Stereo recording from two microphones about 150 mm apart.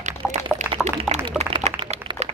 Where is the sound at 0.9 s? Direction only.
50° right (ahead or behind).